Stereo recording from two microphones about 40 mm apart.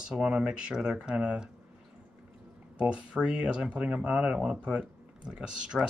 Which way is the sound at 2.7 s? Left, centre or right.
Right.